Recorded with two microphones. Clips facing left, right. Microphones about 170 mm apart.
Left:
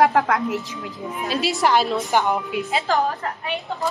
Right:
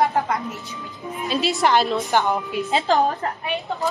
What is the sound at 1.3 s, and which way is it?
A woman's voice, 5° left (ahead or behind).